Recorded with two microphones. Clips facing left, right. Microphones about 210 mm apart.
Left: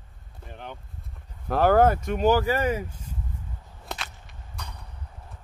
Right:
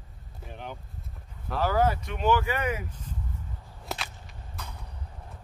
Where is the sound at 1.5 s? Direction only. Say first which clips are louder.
Left 6 dB; 55° left (ahead or behind); by 2.8 s 35° left (ahead or behind).